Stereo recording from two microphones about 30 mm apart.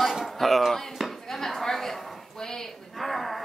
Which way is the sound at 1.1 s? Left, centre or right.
Centre.